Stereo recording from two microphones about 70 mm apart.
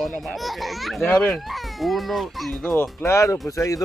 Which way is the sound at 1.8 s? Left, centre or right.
Centre.